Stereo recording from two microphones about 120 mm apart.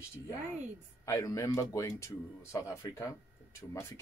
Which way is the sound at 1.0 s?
25° left (ahead or behind).